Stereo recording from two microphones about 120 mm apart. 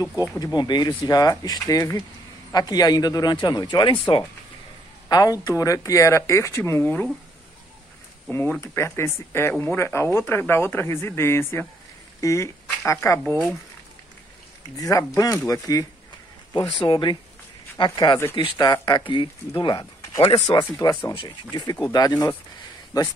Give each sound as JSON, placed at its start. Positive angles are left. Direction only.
{"t": 0.4, "sound": "speech", "side_deg": 35}
{"t": 8.3, "sound": "speech", "side_deg": 20}
{"t": 14.8, "sound": "speech", "side_deg": 30}
{"t": 16.8, "sound": "speech", "side_deg": 40}
{"t": 20.2, "sound": "speech", "side_deg": 55}
{"t": 21.1, "sound": "speech", "side_deg": 40}